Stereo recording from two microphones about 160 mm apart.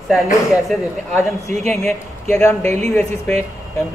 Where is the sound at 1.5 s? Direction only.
5° left (ahead or behind).